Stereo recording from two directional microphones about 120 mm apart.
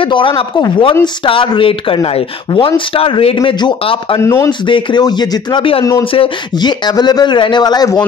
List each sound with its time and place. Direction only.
0.0 s speech: 45° left (ahead or behind)
4.2 s speech: 25° left (ahead or behind)
4.5 s speech: 40° left (ahead or behind)
6.9 s speech: 35° left (ahead or behind)